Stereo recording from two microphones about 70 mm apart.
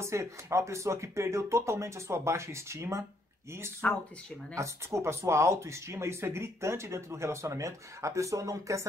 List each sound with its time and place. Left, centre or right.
0.0 s speech: right
3.8 s speech: centre
4.6 s speech: right